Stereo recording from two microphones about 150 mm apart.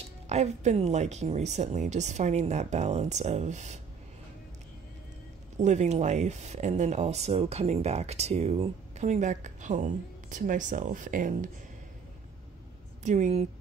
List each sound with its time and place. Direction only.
0.3 s speech: 50° right (ahead or behind)
5.6 s speech: 50° right (ahead or behind)
13.0 s speech: 50° right (ahead or behind)